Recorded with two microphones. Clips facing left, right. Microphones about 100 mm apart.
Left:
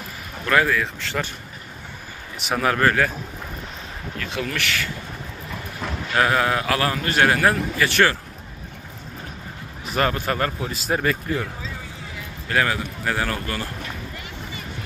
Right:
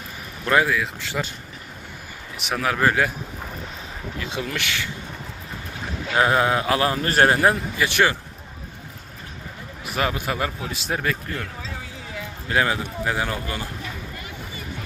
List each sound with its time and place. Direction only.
0.5 s a man's voice: 15° right (ahead or behind)
2.3 s speech: centre (ahead or behind)
2.8 s a man's voice: 15° right (ahead or behind)
4.2 s speech: 15° right (ahead or behind)
6.1 s speech: 20° right (ahead or behind)
9.9 s speech: 5° right (ahead or behind)
12.4 s a man's voice: 20° right (ahead or behind)